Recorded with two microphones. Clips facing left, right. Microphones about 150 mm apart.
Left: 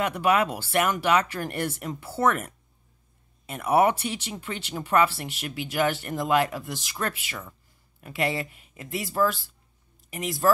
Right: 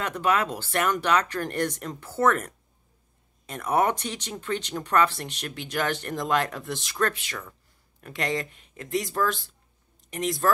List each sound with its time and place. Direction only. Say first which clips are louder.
0.0 s speech: left 2 dB; 10° left (ahead or behind)